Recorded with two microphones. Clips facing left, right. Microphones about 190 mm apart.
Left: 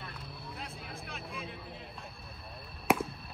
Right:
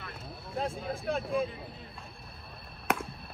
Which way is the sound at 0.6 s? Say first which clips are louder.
Right 16 dB; 30° right (ahead or behind).